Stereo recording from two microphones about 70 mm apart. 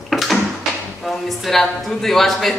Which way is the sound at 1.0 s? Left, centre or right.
Centre.